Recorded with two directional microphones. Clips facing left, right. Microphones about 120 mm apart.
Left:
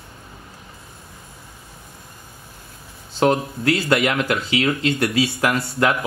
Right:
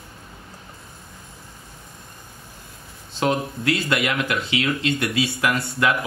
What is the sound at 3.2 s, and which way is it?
Speech, 40° left (ahead or behind).